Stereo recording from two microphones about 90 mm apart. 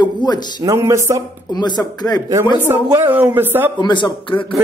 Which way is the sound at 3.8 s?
60° left (ahead or behind).